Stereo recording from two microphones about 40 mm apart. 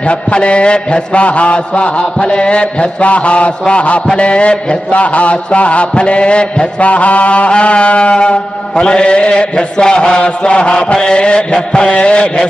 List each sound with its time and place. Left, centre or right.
0.1 s a man's voice: left